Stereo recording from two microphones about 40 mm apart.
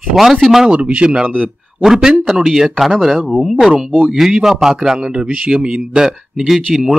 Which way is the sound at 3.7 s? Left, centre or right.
Right.